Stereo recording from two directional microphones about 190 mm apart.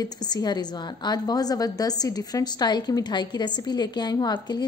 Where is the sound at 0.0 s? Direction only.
20° left (ahead or behind).